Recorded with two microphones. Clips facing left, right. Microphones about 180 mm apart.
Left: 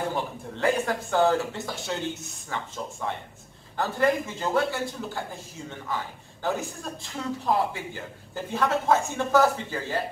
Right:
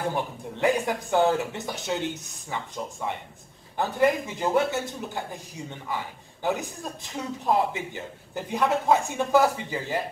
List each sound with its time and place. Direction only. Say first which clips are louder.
0.1 s a man's voice: right 1 dB; 15° right (ahead or behind)